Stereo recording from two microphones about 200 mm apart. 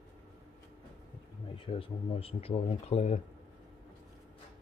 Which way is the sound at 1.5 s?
25° left (ahead or behind).